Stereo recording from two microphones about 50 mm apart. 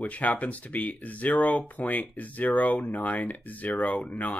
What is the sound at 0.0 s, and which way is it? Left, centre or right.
Speech, left.